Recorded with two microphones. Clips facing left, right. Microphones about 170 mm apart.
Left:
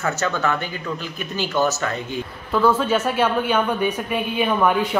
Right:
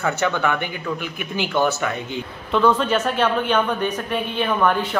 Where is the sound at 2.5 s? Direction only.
5° left (ahead or behind).